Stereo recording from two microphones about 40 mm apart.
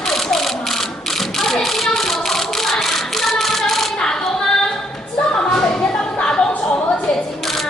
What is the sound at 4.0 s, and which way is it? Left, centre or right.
Female singing, centre.